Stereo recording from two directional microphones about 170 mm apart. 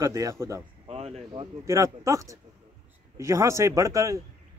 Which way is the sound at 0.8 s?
35° right (ahead or behind).